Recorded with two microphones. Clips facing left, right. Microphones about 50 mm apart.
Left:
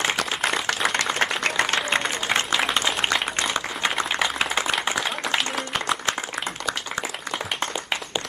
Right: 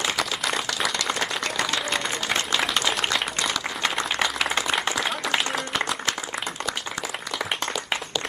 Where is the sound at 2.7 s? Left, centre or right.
Left.